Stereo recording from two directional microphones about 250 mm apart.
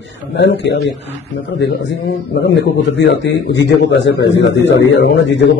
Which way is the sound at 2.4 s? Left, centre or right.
Left.